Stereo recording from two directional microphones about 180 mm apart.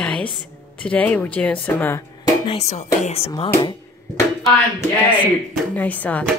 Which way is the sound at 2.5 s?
35° left (ahead or behind).